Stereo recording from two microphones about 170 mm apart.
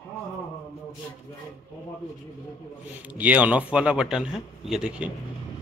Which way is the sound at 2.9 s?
10° right (ahead or behind).